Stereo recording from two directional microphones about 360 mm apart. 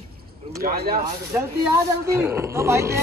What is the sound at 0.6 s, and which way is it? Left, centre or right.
Speech, right.